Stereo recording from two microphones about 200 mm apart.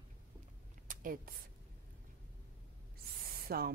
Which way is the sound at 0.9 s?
45° right (ahead or behind).